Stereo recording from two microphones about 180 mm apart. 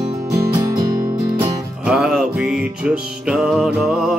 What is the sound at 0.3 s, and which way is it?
Music, 20° right (ahead or behind).